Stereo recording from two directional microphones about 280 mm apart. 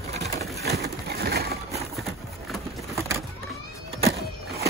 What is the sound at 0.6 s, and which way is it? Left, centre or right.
Pigeon, right.